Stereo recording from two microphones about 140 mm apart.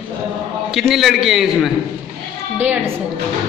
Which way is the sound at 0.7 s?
Centre (ahead or behind).